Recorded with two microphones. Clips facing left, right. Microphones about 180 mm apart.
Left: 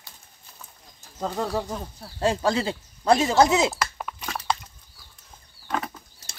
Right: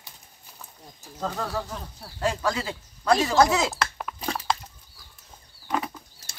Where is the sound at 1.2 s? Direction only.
20° left (ahead or behind).